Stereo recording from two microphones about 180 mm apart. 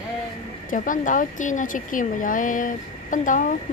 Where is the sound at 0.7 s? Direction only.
45° left (ahead or behind).